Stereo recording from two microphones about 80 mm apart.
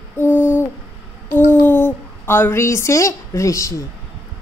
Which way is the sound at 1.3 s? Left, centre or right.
Left.